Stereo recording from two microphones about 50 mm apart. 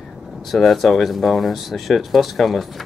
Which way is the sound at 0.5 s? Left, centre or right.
Centre.